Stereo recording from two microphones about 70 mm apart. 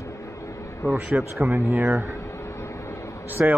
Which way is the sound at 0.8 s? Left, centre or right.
Left.